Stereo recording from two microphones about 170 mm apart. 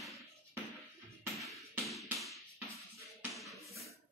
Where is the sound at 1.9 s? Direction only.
Centre (ahead or behind).